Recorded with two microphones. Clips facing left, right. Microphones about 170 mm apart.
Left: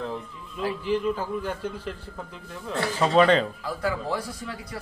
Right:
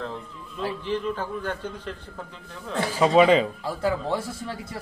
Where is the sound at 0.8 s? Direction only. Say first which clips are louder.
Left 4 dB; 10° left (ahead or behind).